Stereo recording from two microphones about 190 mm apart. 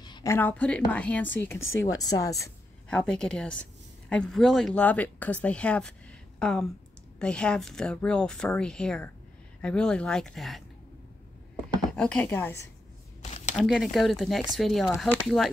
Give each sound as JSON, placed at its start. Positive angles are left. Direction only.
{"t": 0.0, "sound": "a woman's voice", "side_deg": 20}
{"t": 2.9, "sound": "speech", "side_deg": 5}
{"t": 11.9, "sound": "a woman's voice", "side_deg": 5}
{"t": 13.2, "sound": "a sound", "side_deg": 35}
{"t": 13.6, "sound": "speech", "side_deg": 0}